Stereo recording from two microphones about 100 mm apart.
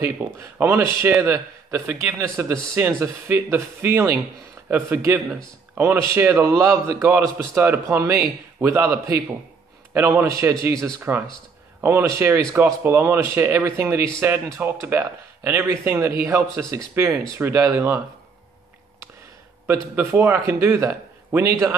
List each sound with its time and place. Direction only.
0.0 s a man's voice: 20° right (ahead or behind)
9.9 s a man's voice: 25° right (ahead or behind)
19.6 s a man's voice: 25° right (ahead or behind)